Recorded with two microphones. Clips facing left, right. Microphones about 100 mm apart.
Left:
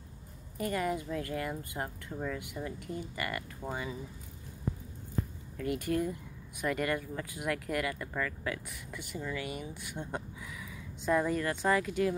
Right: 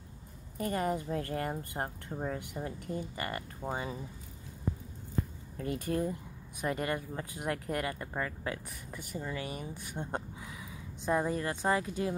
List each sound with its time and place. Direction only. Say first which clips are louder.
0.6 s speech: even; 35° right (ahead or behind)
5.6 s speech: left 1 dB; 30° right (ahead or behind)